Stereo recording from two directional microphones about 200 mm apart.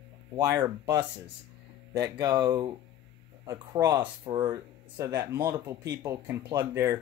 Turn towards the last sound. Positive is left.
turn(degrees=-15)  # may be behind; listen again after turning